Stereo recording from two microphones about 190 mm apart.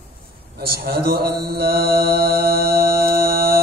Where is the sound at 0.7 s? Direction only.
55° right (ahead or behind).